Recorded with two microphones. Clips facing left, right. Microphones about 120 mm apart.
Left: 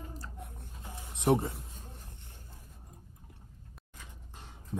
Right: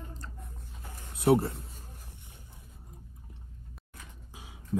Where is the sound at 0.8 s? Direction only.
15° left (ahead or behind).